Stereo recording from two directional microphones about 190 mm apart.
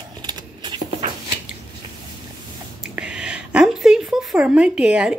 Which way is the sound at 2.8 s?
5° right (ahead or behind).